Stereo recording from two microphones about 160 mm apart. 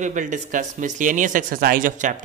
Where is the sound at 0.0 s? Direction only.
50° right (ahead or behind).